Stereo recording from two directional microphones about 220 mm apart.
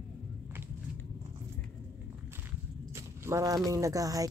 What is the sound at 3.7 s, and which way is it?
Speech, 15° right (ahead or behind).